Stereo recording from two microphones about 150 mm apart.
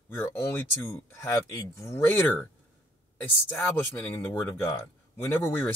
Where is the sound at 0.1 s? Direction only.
15° left (ahead or behind).